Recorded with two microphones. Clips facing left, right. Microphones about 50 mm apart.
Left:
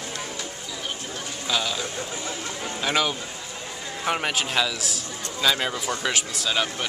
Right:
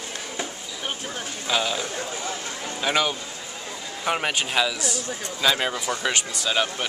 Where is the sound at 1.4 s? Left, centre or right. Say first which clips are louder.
Right 2 dB; centre.